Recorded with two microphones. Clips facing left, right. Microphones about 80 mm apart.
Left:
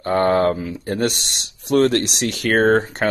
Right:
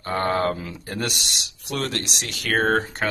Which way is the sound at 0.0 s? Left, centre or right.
Left.